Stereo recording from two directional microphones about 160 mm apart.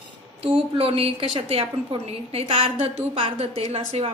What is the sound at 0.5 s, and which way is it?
A woman's voice, 35° right (ahead or behind).